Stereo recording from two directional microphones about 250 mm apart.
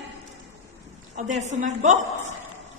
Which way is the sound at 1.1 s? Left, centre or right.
Right.